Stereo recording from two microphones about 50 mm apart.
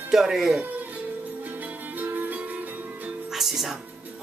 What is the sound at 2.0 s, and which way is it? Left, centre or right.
Music, right.